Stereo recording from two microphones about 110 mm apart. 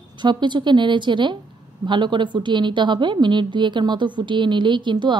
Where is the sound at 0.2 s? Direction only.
45° right (ahead or behind).